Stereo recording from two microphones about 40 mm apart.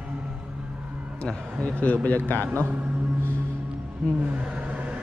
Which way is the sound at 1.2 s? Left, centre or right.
Left.